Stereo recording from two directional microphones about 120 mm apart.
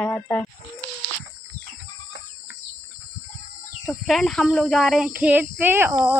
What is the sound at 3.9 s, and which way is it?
A woman's voice, centre (ahead or behind).